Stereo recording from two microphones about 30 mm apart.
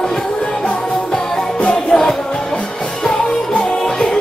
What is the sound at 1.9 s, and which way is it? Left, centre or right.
Music, left.